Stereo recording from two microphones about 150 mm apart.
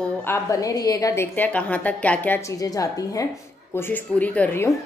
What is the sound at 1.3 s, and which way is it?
A woman's voice, 10° left (ahead or behind).